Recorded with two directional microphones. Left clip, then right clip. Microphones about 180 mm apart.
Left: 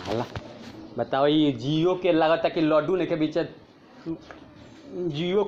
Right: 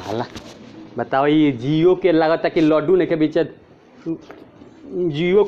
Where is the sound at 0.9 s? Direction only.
15° right (ahead or behind).